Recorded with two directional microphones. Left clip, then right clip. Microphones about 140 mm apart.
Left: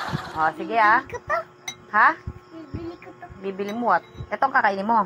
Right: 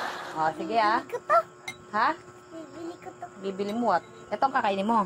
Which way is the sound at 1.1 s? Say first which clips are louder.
Right 3 dB; 15° right (ahead or behind).